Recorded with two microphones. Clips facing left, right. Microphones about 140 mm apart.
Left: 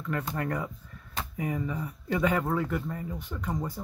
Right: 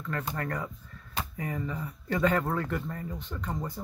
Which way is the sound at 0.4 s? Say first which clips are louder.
Left 2 dB; 15° left (ahead or behind).